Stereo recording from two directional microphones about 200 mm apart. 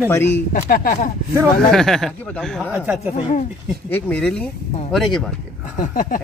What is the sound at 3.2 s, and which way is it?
Speech, 35° left (ahead or behind).